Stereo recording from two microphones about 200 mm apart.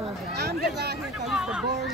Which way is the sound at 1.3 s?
5° right (ahead or behind).